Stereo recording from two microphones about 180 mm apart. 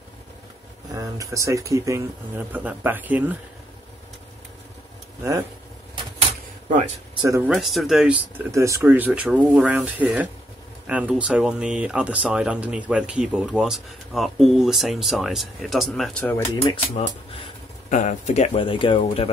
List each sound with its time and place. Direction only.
0.9 s speech: 20° right (ahead or behind)
7.2 s speech: 15° right (ahead or behind)
7.4 s speech: centre (ahead or behind)
8.5 s speech: 15° right (ahead or behind); by 16.3 s 5° left (ahead or behind)
16.6 s speech: 30° left (ahead or behind)
17.8 s speech: 40° left (ahead or behind)